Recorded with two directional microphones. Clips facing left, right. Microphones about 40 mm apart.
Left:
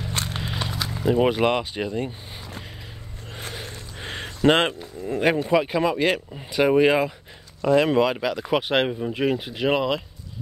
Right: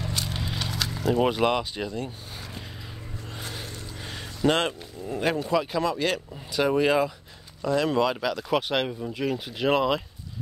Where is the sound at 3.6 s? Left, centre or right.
Left.